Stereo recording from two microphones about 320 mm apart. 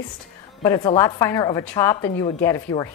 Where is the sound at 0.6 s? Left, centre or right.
Centre.